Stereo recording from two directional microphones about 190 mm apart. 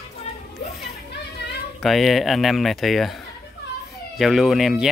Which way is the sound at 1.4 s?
60° left (ahead or behind).